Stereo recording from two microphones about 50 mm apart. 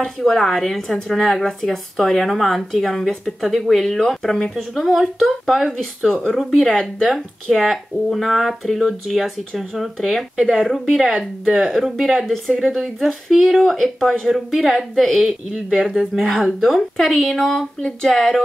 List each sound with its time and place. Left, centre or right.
0.0 s a woman's voice: centre
6.7 s speech: centre
7.1 s a woman's voice: centre
11.1 s speech: centre
11.5 s a woman's voice: centre